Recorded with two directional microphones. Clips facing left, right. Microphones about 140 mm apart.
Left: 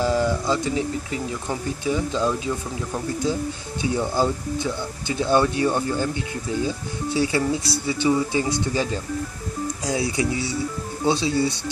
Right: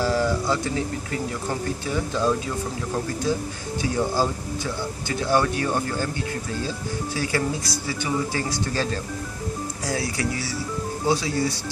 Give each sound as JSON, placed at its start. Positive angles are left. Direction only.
{"t": 0.0, "sound": "speech", "side_deg": 20}
{"t": 3.8, "sound": "speech", "side_deg": 20}